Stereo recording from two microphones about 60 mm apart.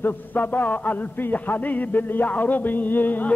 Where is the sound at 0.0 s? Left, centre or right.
Left.